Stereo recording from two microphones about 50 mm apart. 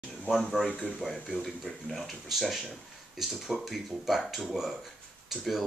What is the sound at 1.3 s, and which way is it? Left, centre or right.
Speech, centre.